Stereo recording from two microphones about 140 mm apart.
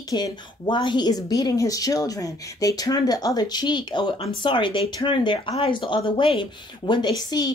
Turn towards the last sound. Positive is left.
turn(degrees=30)  # may be behind; listen again after turning